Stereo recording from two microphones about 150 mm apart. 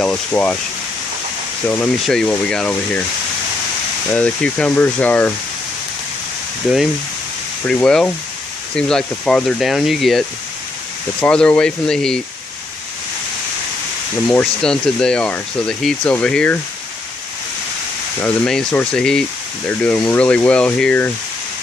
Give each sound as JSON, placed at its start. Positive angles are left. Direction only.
{"t": 0.0, "sound": "speech", "side_deg": 10}
{"t": 1.7, "sound": "speech", "side_deg": 5}
{"t": 4.1, "sound": "speech", "side_deg": 10}
{"t": 7.6, "sound": "speech", "side_deg": 5}
{"t": 14.2, "sound": "speech", "side_deg": 10}
{"t": 18.2, "sound": "speech", "side_deg": 10}